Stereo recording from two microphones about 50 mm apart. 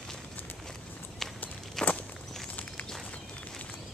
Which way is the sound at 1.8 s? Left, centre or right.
Centre.